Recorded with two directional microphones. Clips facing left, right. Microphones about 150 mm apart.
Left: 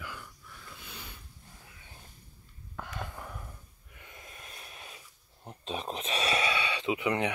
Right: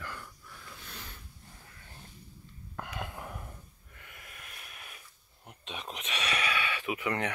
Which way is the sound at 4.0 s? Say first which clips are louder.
Left 2 dB; 25° left (ahead or behind).